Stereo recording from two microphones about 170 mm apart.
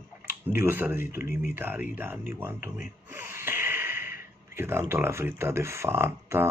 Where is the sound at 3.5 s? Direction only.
15° right (ahead or behind).